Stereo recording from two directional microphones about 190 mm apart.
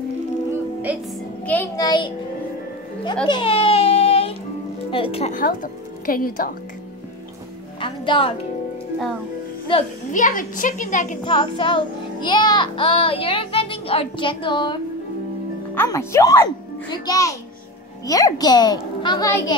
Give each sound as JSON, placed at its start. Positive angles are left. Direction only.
{"t": 0.9, "sound": "speech", "side_deg": -5}
{"t": 1.4, "sound": "speech", "side_deg": 10}
{"t": 1.9, "sound": "child singing", "side_deg": 25}
{"t": 3.3, "sound": "baby cry", "side_deg": 25}
{"t": 4.9, "sound": "child singing", "side_deg": 30}
{"t": 5.3, "sound": "a woman's voice", "side_deg": 45}
{"t": 7.8, "sound": "child singing", "side_deg": 25}
{"t": 9.7, "sound": "child singing", "side_deg": 25}
{"t": 10.1, "sound": "a woman's voice", "side_deg": 45}
{"t": 11.2, "sound": "child singing", "side_deg": 25}
{"t": 15.7, "sound": "speech", "side_deg": 10}
{"t": 16.9, "sound": "child singing", "side_deg": 20}